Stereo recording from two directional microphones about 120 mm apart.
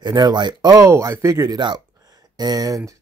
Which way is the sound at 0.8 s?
25° right (ahead or behind).